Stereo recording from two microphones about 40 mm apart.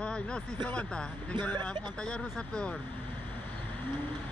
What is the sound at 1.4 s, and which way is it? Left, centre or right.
Speech, left.